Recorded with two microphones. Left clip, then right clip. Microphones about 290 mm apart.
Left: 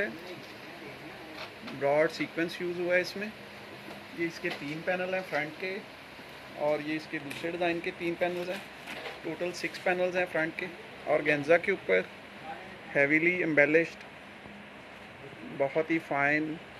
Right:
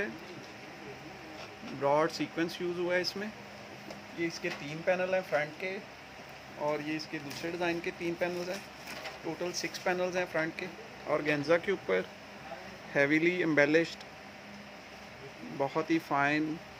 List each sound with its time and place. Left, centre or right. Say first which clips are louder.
1.8 s speech: left 2 dB; right
4.3 s speech: left 2 dB; right
15.6 s speech: left 2 dB; right